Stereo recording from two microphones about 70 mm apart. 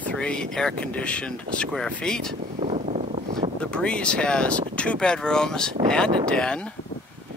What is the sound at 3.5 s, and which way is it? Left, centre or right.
Speech, centre.